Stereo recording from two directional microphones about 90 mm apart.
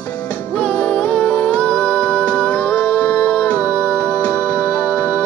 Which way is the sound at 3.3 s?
15° left (ahead or behind).